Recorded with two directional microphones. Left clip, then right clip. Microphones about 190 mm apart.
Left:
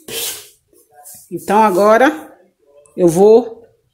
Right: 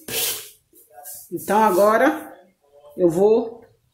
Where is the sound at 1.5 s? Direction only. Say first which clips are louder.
Left 5 dB; 40° left (ahead or behind).